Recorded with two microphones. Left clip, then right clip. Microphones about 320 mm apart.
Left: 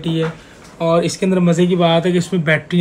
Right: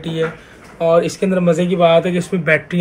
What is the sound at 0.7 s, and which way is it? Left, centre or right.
Speech, left.